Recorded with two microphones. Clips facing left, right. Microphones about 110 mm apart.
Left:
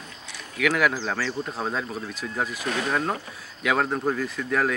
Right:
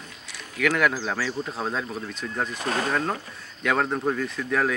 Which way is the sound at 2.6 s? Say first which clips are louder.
Right 1 dB; 35° right (ahead or behind).